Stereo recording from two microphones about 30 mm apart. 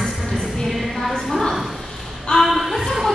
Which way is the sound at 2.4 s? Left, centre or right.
Centre.